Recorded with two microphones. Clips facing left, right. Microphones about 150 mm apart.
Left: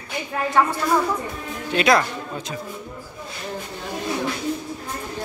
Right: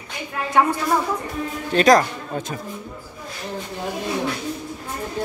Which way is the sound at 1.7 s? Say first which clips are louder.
Right 3 dB; 40° right (ahead or behind).